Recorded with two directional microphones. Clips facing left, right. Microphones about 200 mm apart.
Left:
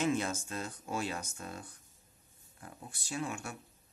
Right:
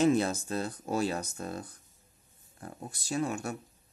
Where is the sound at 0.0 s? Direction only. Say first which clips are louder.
Right 7 dB; 35° right (ahead or behind).